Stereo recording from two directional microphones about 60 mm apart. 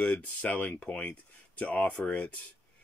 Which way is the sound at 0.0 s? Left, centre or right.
Left.